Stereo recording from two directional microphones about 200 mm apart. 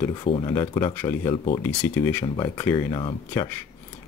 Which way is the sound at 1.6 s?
10° left (ahead or behind).